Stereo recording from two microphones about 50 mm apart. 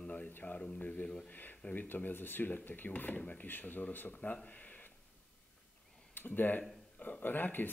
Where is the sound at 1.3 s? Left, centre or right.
Left.